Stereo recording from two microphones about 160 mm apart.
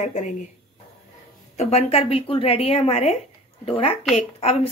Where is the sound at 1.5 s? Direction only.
40° left (ahead or behind).